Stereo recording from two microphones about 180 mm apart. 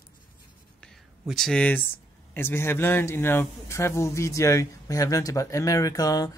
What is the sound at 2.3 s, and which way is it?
Speech, 15° left (ahead or behind).